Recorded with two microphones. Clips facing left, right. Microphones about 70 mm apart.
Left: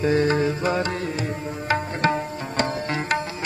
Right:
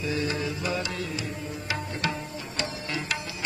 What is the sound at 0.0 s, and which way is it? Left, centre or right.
Music, left.